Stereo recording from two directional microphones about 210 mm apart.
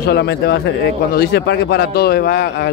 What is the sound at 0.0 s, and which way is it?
A man's voice, 55° left (ahead or behind).